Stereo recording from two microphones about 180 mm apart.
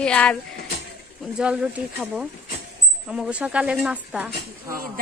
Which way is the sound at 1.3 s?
5° right (ahead or behind).